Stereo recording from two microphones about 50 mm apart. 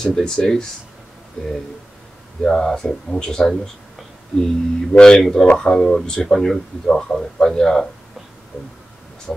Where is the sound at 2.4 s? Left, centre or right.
Centre.